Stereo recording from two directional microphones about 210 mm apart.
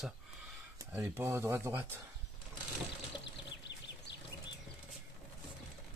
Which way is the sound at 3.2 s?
55° left (ahead or behind).